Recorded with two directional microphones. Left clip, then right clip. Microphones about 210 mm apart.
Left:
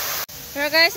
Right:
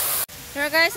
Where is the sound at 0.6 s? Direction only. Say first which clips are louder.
Left 2 dB; 5° left (ahead or behind).